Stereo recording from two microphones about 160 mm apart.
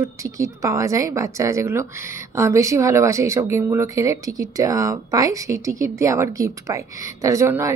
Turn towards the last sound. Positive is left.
turn(degrees=-20)  # may be behind; listen again after turning